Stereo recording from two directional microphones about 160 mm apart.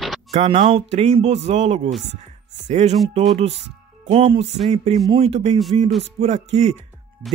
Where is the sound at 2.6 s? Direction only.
45° right (ahead or behind).